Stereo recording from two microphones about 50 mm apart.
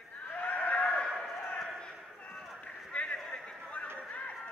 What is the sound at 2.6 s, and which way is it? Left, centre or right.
Run, centre.